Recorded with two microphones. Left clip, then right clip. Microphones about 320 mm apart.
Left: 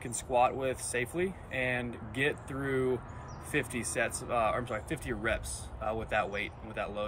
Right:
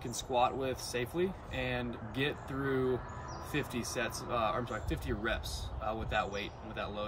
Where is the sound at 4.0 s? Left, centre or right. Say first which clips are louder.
Left 4 dB; centre.